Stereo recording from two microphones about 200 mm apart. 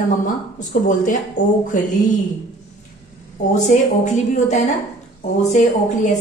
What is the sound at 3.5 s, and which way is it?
A woman's voice, 35° left (ahead or behind).